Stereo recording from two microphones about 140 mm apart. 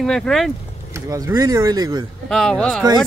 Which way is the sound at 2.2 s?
5° left (ahead or behind).